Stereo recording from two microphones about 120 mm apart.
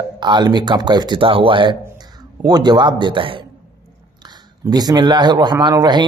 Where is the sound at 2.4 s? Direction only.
35° right (ahead or behind).